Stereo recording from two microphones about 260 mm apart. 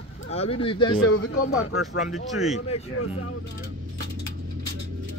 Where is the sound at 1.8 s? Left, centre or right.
Centre.